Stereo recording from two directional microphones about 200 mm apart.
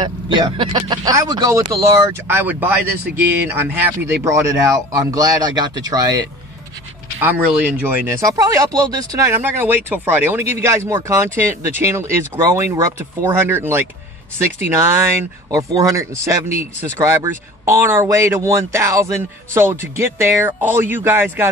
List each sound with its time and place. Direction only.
0.0 s speech: 20° right (ahead or behind)
7.2 s speech: 10° right (ahead or behind)